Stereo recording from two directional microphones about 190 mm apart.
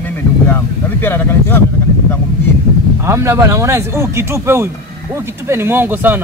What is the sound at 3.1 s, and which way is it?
Speech, 15° right (ahead or behind).